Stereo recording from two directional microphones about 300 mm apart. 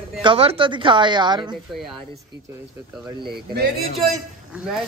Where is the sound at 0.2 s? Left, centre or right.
Centre.